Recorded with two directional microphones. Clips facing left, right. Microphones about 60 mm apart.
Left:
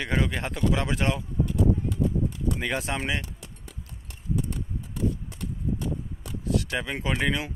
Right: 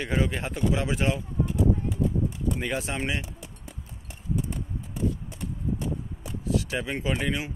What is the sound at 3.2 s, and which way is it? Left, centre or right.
Music, centre.